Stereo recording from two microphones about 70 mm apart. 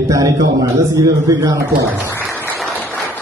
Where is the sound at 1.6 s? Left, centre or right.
Right.